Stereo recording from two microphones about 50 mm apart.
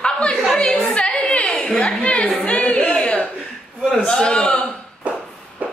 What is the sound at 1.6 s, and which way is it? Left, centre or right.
Speech, centre.